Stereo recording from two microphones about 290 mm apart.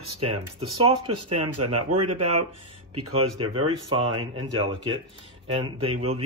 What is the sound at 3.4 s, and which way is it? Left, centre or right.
Speech, centre.